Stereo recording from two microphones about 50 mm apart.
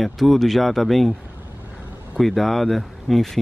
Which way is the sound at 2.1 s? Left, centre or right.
Centre.